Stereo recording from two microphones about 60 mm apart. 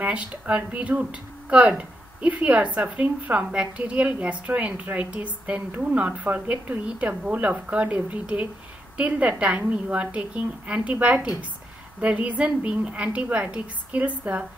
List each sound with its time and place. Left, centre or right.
0.0 s a woman's voice: right